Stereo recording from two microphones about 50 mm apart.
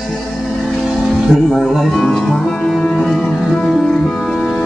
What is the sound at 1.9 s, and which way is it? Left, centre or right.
Music, centre.